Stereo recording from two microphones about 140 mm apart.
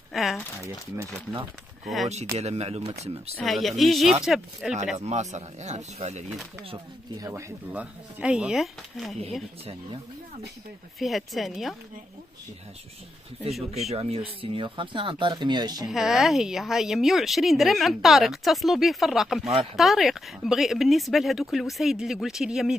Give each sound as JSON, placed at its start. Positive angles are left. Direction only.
{"t": 0.1, "sound": "speech", "side_deg": 0}
{"t": 2.3, "sound": "speech", "side_deg": -50}
{"t": 3.3, "sound": "a woman's voice", "side_deg": 0}
{"t": 4.9, "sound": "speech", "side_deg": -55}
{"t": 6.7, "sound": "speech", "side_deg": -30}
{"t": 7.2, "sound": "speech", "side_deg": -20}
{"t": 7.7, "sound": "speech", "side_deg": -10}
{"t": 11.0, "sound": "a woman's voice", "side_deg": 0}
{"t": 13.7, "sound": "speech", "side_deg": -45}
{"t": 15.9, "sound": "a woman's voice", "side_deg": 0}